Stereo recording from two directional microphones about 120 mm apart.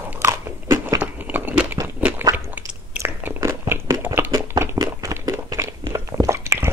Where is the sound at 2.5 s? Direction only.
15° right (ahead or behind).